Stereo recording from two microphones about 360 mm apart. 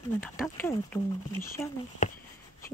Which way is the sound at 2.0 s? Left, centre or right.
Left.